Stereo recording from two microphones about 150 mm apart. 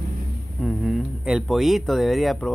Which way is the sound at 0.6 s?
Centre (ahead or behind).